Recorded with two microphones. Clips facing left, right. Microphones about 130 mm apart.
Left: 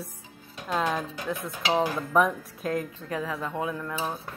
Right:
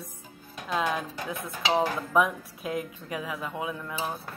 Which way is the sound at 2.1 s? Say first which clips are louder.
Left 1 dB; 5° right (ahead or behind).